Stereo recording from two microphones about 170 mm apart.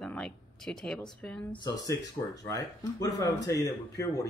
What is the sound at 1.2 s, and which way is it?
Speech, 5° left (ahead or behind).